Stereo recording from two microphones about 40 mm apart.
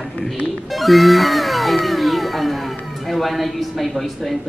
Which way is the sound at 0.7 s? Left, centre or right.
Centre.